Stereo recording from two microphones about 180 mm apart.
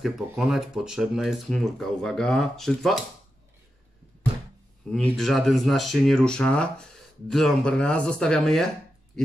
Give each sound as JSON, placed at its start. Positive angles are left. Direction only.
{"t": 0.0, "sound": "speech", "side_deg": 0}
{"t": 4.9, "sound": "speech", "side_deg": 0}